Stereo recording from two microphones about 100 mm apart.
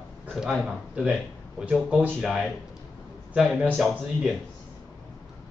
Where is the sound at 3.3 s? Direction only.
10° right (ahead or behind).